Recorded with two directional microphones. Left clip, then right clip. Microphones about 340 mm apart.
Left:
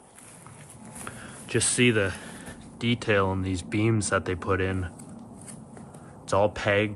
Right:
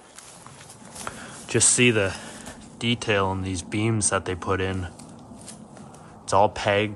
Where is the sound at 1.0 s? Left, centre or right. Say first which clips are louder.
Right 5 dB; centre.